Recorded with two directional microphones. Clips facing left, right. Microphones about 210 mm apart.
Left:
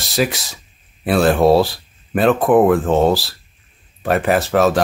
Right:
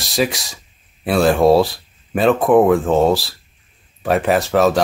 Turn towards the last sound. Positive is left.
turn(degrees=0)  # may be behind; listen again after turning